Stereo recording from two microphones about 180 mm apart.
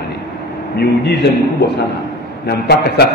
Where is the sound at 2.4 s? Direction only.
65° left (ahead or behind).